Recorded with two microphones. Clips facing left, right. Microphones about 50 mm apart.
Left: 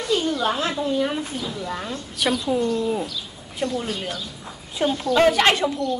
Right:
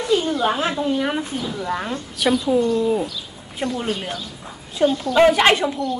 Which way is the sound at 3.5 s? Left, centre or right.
Right.